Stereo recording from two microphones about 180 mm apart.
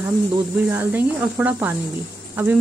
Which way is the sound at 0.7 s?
10° right (ahead or behind).